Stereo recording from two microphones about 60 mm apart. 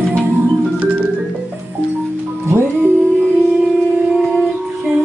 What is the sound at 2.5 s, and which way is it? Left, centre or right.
Music, right.